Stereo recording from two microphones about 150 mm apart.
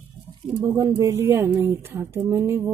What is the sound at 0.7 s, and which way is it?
A woman's voice, 20° right (ahead or behind).